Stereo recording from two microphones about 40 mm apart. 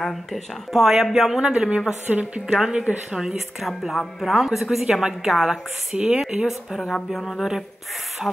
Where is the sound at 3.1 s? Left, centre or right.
Centre.